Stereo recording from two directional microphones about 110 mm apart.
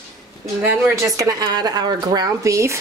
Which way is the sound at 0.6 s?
25° right (ahead or behind).